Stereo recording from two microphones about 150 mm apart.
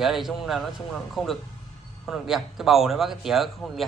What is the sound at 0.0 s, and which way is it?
A man's voice, centre (ahead or behind).